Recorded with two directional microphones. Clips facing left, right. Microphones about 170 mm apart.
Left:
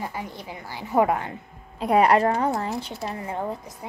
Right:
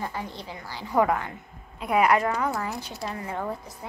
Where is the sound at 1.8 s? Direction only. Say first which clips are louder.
Left 3 dB; 35° left (ahead or behind).